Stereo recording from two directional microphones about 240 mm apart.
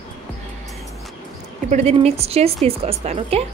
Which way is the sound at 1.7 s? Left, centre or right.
Right.